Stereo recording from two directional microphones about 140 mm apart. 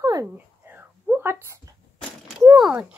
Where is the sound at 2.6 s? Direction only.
5° right (ahead or behind).